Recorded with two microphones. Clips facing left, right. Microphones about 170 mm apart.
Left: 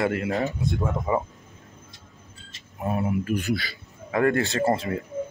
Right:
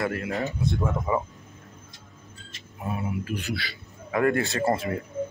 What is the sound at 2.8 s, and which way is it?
Speech, 40° left (ahead or behind).